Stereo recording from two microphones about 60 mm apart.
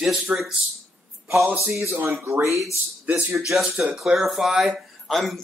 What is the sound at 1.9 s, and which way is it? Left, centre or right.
Speech, right.